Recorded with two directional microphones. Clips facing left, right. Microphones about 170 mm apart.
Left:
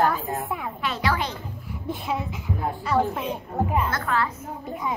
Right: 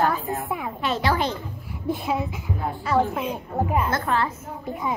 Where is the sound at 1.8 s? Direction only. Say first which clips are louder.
Right 4 dB; 5° right (ahead or behind).